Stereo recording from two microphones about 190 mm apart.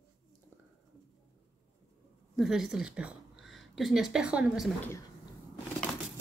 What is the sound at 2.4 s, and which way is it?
A woman's voice, centre (ahead or behind).